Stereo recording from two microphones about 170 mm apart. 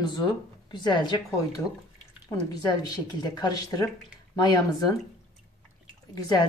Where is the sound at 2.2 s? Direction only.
20° left (ahead or behind).